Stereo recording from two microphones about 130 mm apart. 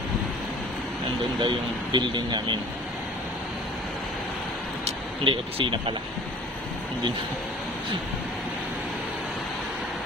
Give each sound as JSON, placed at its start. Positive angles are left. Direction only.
{"t": 1.4, "sound": "speech", "side_deg": -40}
{"t": 4.8, "sound": "speech", "side_deg": -45}